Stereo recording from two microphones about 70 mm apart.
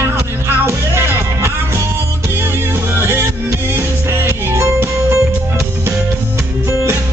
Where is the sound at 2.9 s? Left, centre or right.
Right.